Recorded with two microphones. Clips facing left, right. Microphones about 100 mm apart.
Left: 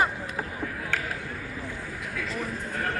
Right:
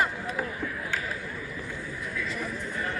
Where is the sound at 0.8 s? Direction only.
60° left (ahead or behind).